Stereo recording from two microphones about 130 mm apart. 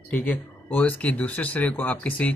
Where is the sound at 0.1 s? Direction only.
15° left (ahead or behind).